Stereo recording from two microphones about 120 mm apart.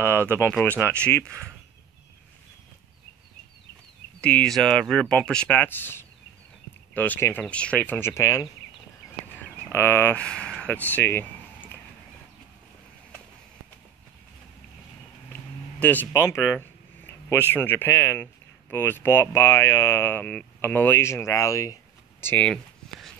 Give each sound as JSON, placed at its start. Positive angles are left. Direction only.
{"t": 0.0, "sound": "speech", "side_deg": 15}
{"t": 4.2, "sound": "speech", "side_deg": 10}
{"t": 9.7, "sound": "speech", "side_deg": 20}
{"t": 15.8, "sound": "speech", "side_deg": 15}
{"t": 22.5, "sound": "a sound", "side_deg": 5}